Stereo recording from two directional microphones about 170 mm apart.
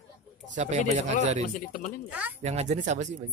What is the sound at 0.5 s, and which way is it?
Speech, 40° right (ahead or behind).